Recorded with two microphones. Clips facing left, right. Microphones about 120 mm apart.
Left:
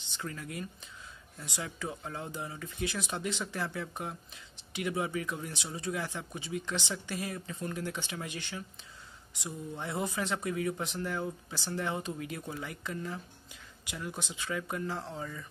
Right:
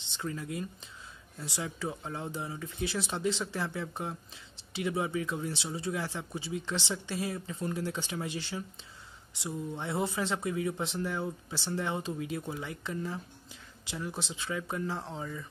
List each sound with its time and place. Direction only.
0.2 s speech: 25° right (ahead or behind)